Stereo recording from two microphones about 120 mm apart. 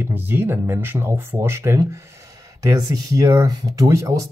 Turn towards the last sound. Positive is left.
turn(degrees=-30)  # may be behind; listen again after turning